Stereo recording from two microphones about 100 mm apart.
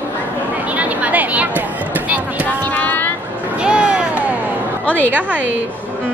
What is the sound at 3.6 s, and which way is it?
Music, 10° right (ahead or behind).